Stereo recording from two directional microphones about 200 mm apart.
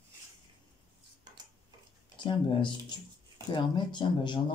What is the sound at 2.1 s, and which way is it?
Speech, 25° left (ahead or behind).